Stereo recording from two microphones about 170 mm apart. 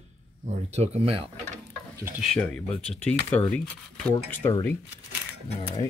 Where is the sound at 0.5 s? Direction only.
40° right (ahead or behind).